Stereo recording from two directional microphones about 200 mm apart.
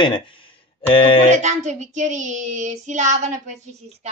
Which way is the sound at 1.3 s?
35° right (ahead or behind).